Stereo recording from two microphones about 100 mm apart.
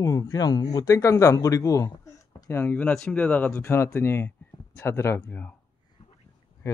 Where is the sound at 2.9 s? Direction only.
5° left (ahead or behind).